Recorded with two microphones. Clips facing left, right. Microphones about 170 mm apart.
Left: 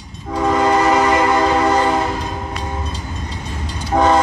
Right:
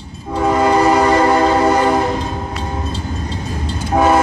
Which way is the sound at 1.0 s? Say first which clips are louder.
Right 2 dB; 30° right (ahead or behind).